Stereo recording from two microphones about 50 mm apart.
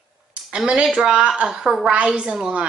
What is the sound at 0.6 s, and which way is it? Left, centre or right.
Speech, centre.